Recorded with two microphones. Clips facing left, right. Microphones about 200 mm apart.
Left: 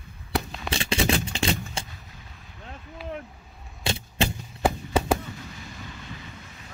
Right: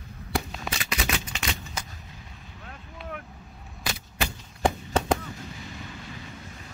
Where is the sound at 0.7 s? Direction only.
30° left (ahead or behind).